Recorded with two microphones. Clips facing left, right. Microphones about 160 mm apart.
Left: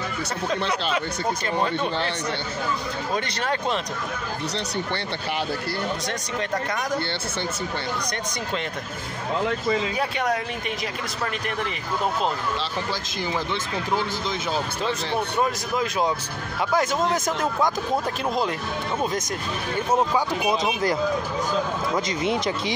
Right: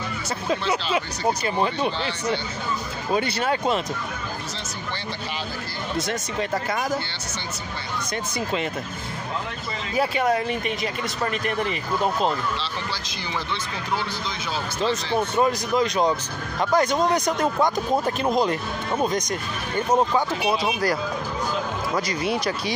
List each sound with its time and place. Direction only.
0.9 s speech: 10° right (ahead or behind)
3.2 s speech: 10° right (ahead or behind)
9.9 s speech: centre (ahead or behind)
15.3 s speech: 5° left (ahead or behind)
19.9 s speech: 10° left (ahead or behind)
20.6 s speech: 20° left (ahead or behind)